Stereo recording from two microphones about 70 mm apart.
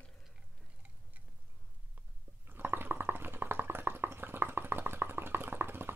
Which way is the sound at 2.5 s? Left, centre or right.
Right.